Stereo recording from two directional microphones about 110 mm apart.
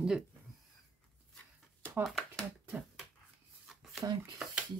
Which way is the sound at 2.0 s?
Centre (ahead or behind).